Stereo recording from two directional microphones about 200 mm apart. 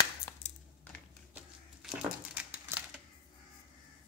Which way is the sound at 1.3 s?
5° right (ahead or behind).